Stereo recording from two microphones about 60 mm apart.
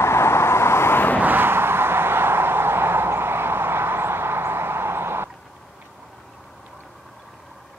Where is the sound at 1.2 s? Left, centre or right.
Right.